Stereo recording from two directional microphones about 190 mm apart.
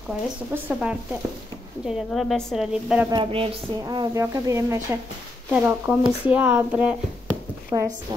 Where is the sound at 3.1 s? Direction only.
30° right (ahead or behind).